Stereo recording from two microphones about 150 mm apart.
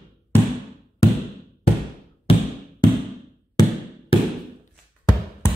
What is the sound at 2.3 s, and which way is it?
Music, 40° left (ahead or behind).